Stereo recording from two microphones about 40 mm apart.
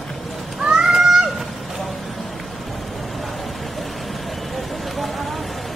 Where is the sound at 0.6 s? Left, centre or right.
Centre.